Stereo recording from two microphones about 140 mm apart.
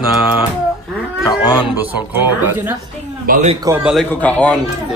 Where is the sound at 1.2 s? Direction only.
25° left (ahead or behind).